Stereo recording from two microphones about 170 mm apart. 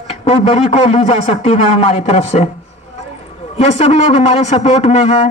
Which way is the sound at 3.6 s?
40° left (ahead or behind).